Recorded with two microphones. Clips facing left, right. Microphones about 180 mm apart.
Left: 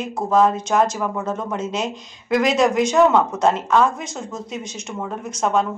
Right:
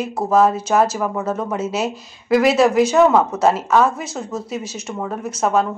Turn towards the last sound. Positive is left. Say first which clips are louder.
# right 2 dB
turn(degrees=-5)  # may be behind; listen again after turning